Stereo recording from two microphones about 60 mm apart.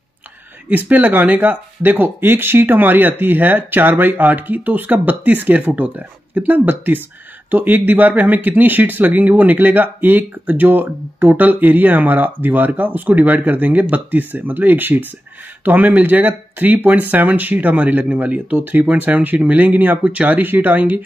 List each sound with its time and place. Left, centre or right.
0.7 s speech: right